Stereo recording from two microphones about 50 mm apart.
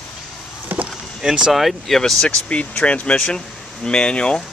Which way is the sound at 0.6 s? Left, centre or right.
Right.